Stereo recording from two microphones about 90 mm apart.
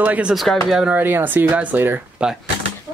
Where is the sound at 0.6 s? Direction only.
5° right (ahead or behind).